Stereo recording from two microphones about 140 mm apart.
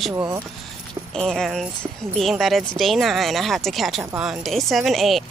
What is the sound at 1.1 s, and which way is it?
Speech, 5° left (ahead or behind).